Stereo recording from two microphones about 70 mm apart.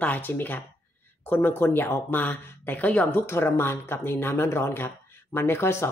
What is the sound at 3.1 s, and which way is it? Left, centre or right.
Speech, left.